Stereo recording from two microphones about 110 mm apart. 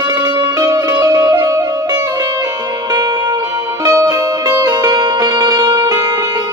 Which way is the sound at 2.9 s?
35° right (ahead or behind).